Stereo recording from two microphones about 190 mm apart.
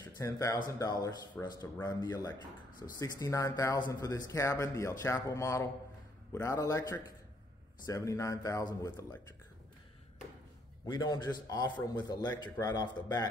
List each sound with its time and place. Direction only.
0.0 s speech: 15° left (ahead or behind)
10.9 s a man's voice: 20° left (ahead or behind)